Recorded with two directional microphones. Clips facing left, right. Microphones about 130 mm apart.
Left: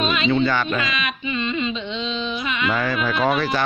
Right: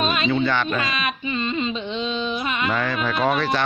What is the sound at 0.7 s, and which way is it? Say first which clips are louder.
Carnatic music: even; 40° right (ahead or behind).